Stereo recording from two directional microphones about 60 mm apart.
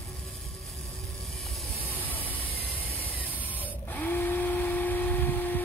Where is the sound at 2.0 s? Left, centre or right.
Left.